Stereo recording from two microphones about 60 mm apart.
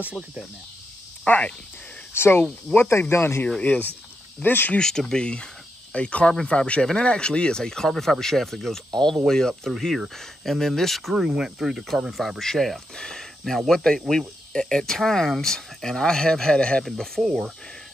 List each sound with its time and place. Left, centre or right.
1.2 s speech: left
2.1 s speech: left
2.7 s speech: centre
3.1 s speech: left
3.4 s speech: centre
4.7 s speech: centre
11.1 s speech: centre
12.1 s speech: centre
16.8 s speech: centre
17.2 s speech: centre